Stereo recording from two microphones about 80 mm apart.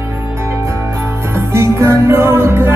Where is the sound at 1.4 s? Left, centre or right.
Right.